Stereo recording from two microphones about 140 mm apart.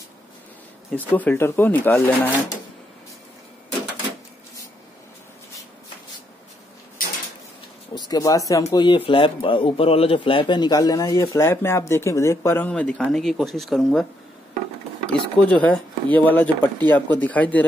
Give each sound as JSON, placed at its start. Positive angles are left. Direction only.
{"t": 0.9, "sound": "speech", "side_deg": 10}
{"t": 7.9, "sound": "speech", "side_deg": 25}
{"t": 8.7, "sound": "speech", "side_deg": 35}
{"t": 12.6, "sound": "speech", "side_deg": 10}
{"t": 15.0, "sound": "speech", "side_deg": 10}